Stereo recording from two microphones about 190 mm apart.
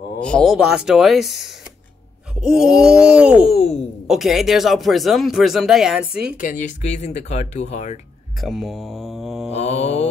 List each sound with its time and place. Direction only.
0.2 s speech: 5° left (ahead or behind)
3.4 s speech: 30° left (ahead or behind)
4.1 s speech: centre (ahead or behind)
6.3 s speech: 40° left (ahead or behind)
8.4 s speech: centre (ahead or behind)
9.5 s speech: 35° left (ahead or behind)